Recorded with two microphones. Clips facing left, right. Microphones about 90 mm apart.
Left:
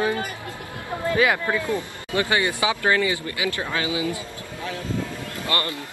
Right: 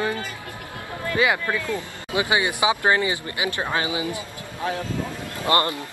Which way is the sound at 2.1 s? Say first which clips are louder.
Even; 15° right (ahead or behind).